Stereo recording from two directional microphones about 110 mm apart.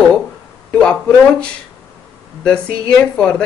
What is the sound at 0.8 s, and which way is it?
Speech, 10° left (ahead or behind).